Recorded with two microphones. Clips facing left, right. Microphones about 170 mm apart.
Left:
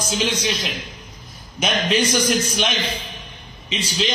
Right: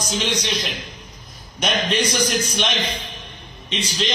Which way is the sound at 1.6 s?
10° left (ahead or behind).